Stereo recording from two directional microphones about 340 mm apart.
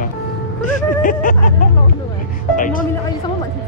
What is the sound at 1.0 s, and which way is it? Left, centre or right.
Speech, left.